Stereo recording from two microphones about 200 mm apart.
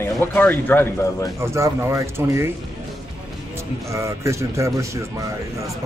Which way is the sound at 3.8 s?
15° right (ahead or behind).